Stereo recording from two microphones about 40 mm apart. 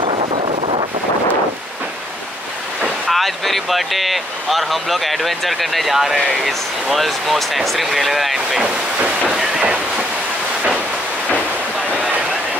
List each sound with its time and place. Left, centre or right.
3.1 s speech: centre
8.6 s speech: right
9.3 s train: centre
9.6 s speech: right